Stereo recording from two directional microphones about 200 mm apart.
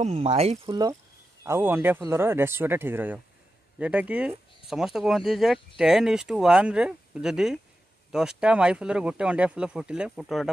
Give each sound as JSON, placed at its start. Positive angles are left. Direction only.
{"t": 0.0, "sound": "speech", "side_deg": -35}
{"t": 0.7, "sound": "speech", "side_deg": -20}